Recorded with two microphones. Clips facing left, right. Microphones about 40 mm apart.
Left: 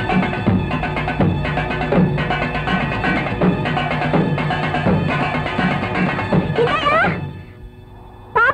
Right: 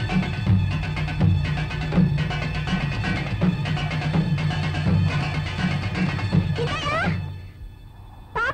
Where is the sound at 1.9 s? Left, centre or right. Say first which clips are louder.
Left 6 dB; left.